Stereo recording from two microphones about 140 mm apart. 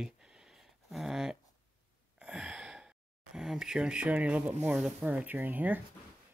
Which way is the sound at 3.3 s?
5° right (ahead or behind).